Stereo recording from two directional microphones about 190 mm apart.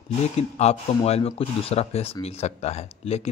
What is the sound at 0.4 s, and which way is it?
Speech, 35° left (ahead or behind).